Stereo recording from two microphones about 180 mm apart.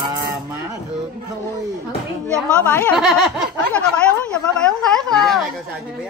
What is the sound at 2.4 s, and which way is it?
Speech, 5° left (ahead or behind).